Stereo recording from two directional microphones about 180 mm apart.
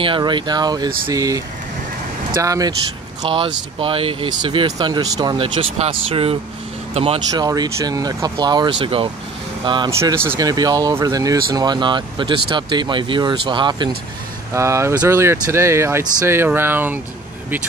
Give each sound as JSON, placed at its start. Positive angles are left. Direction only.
{"t": 0.0, "sound": "speech", "side_deg": -25}
{"t": 7.4, "sound": "speech", "side_deg": -20}